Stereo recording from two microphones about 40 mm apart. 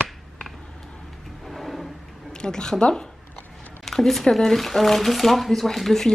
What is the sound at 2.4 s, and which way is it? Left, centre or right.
A woman's voice, centre.